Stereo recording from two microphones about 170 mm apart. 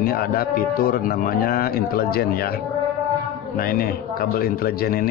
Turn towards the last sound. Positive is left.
turn(degrees=60)  # may be behind; listen again after turning